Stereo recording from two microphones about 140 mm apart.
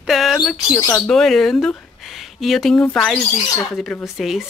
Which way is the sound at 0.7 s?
20° left (ahead or behind).